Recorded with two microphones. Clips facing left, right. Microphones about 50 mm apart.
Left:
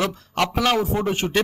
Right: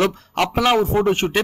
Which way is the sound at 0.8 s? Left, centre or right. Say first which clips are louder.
Right 5 dB; right.